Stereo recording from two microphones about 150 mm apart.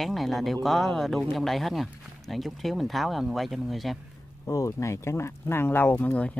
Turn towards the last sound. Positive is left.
turn(degrees=10)  # may be behind; listen again after turning